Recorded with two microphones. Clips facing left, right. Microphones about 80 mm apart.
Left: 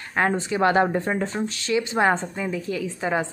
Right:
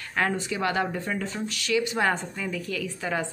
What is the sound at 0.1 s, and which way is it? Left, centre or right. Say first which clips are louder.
Speech: left 4 dB; left.